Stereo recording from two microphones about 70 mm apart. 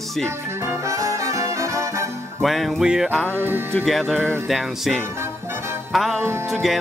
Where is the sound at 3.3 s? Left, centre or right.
Right.